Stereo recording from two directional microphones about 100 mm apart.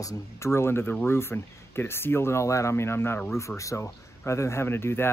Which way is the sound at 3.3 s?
30° left (ahead or behind).